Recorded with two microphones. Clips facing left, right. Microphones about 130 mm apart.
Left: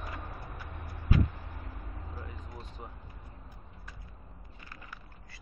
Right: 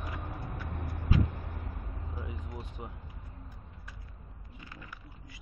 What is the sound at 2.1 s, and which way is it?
Vehicle, 10° right (ahead or behind).